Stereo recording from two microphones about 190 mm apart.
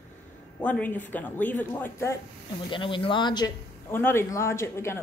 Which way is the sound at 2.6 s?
25° left (ahead or behind).